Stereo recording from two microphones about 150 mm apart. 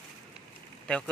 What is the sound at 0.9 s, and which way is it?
Speech, 5° left (ahead or behind).